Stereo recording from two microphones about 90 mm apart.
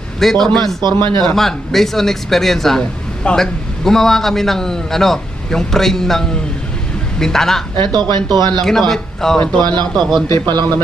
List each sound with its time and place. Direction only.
0.2 s speech: 5° left (ahead or behind)
0.8 s speech: 60° right (ahead or behind)
1.3 s speech: 5° left (ahead or behind)
7.7 s speech: 60° right (ahead or behind)
8.5 s speech: 5° left (ahead or behind)
9.6 s speech: 55° right (ahead or behind)